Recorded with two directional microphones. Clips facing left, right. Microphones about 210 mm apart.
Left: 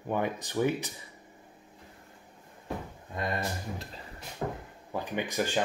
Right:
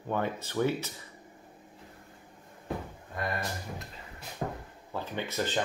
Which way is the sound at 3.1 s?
20° left (ahead or behind).